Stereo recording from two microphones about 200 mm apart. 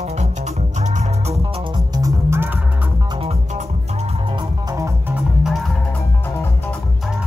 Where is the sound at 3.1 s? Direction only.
30° right (ahead or behind); by 5.1 s 15° right (ahead or behind).